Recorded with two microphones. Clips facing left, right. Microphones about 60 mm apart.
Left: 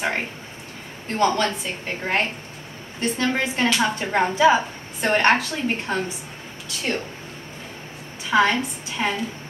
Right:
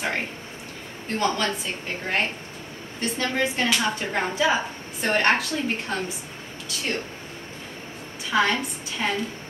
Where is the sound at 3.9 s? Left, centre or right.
Centre.